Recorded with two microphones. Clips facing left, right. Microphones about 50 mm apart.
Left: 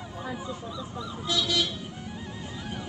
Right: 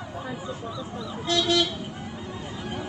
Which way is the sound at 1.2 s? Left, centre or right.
Right.